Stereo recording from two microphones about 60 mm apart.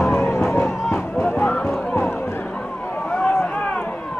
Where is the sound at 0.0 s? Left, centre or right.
Left.